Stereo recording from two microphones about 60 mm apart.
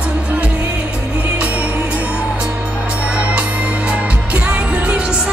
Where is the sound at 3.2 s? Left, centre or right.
Centre.